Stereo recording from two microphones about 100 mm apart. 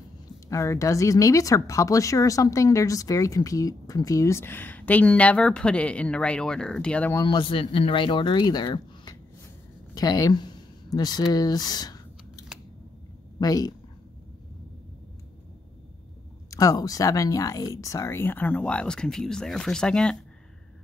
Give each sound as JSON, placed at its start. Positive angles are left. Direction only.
{"t": 0.5, "sound": "speech", "side_deg": 30}
{"t": 7.2, "sound": "speech", "side_deg": 60}
{"t": 9.9, "sound": "speech", "side_deg": 35}
{"t": 11.3, "sound": "computer keyboard", "side_deg": 40}
{"t": 13.4, "sound": "speech", "side_deg": 40}
{"t": 16.4, "sound": "speech", "side_deg": 35}